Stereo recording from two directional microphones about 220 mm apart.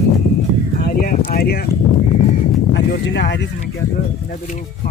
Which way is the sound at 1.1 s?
45° left (ahead or behind).